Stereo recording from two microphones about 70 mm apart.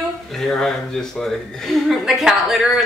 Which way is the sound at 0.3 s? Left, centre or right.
Centre.